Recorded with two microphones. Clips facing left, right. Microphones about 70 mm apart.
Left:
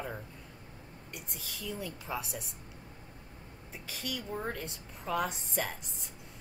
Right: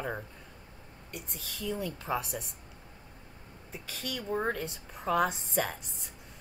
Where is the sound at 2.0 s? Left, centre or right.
Right.